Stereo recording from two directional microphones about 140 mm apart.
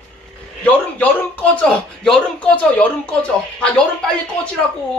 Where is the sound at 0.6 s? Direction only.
10° left (ahead or behind).